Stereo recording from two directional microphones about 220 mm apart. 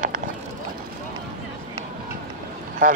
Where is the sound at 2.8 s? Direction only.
40° right (ahead or behind).